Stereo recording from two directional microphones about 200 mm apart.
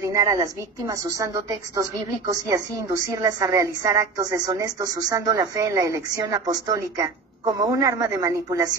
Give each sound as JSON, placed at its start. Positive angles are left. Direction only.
{"t": 0.0, "sound": "a woman's voice", "side_deg": -15}